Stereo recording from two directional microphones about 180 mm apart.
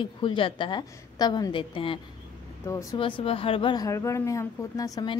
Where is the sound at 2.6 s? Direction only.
15° left (ahead or behind).